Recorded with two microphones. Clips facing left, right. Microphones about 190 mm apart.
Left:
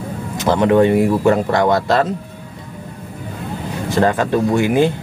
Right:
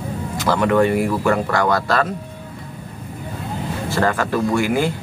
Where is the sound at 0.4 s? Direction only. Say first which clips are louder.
Left 4 dB; 20° left (ahead or behind).